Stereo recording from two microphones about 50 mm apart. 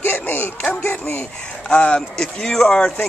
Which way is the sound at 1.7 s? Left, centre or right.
Left.